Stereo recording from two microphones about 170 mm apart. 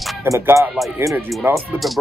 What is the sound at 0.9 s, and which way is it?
Speech, 15° right (ahead or behind).